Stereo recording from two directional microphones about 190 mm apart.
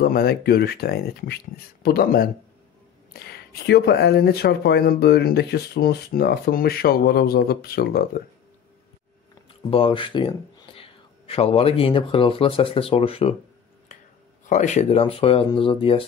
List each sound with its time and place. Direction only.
0.0 s speech: 50° left (ahead or behind)
9.7 s speech: 30° left (ahead or behind)
14.4 s speech: 40° left (ahead or behind)